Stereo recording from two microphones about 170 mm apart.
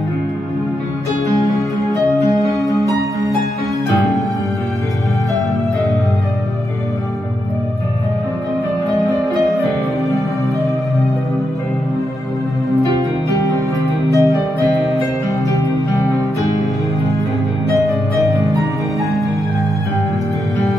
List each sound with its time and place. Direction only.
2.0 s music: 20° right (ahead or behind)
12.7 s music: 20° left (ahead or behind)
17.7 s music: 20° right (ahead or behind)